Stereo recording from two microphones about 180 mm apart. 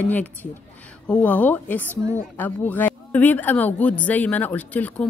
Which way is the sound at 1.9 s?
15° right (ahead or behind).